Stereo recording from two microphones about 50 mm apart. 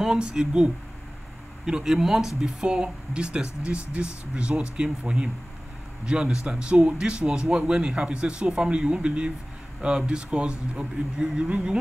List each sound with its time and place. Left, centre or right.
0.0 s speech: centre
1.7 s speech: centre